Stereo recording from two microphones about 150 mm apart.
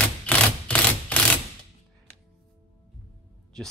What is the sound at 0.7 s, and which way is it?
Typewriter, 10° left (ahead or behind).